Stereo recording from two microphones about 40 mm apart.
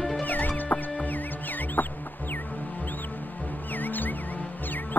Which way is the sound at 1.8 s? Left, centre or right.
Left.